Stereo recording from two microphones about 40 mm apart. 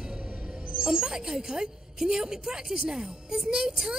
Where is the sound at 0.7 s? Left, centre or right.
Centre.